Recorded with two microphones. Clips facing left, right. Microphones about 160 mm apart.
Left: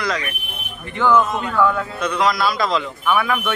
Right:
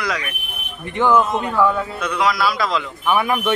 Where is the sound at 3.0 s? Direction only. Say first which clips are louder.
Right 2 dB; 20° right (ahead or behind).